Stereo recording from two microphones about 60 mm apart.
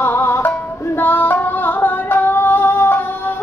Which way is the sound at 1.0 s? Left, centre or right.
Left.